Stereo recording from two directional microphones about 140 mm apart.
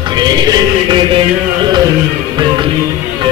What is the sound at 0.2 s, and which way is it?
Music, 30° right (ahead or behind).